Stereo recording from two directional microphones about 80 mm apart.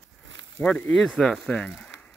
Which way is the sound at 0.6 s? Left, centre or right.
Left.